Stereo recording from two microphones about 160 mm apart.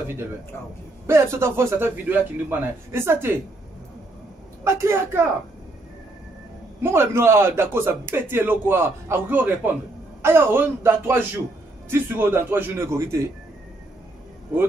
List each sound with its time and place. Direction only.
1.0 s a man's voice: 15° right (ahead or behind)
4.6 s a man's voice: 15° right (ahead or behind)
6.8 s a man's voice: 15° right (ahead or behind)